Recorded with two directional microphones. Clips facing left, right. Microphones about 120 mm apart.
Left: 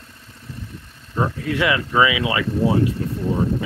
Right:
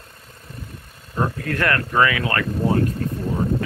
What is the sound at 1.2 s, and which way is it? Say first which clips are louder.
Speech: left 2 dB; 5° left (ahead or behind).